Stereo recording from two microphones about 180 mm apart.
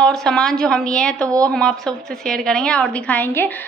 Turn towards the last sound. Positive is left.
turn(degrees=10)  # may be behind; listen again after turning